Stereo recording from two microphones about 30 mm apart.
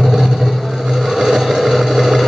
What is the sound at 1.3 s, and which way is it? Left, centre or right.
Vehicle, centre.